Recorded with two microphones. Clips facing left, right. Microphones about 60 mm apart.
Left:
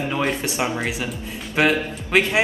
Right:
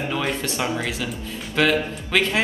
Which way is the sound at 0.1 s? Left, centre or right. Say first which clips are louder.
Left 2 dB; left.